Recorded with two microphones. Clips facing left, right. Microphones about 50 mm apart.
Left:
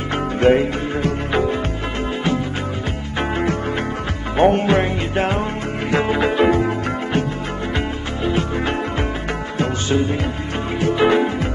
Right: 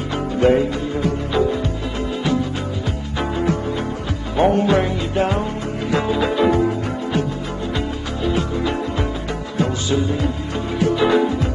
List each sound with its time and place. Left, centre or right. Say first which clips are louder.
0.4 s music: left 1 dB; left
3.2 s music: even; left
6.4 s music: even; left
8.4 s music: even; left